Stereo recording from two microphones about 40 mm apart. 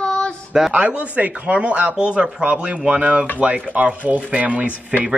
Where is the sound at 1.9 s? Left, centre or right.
Right.